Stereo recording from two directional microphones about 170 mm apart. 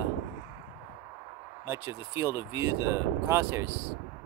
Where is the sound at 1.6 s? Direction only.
15° right (ahead or behind).